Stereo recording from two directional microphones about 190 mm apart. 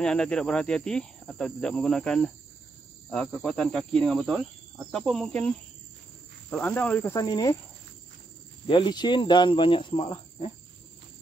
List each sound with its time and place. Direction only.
0.0 s cricket: 5° left (ahead or behind)
6.5 s cricket: 10° left (ahead or behind)
8.6 s speech: 25° left (ahead or behind)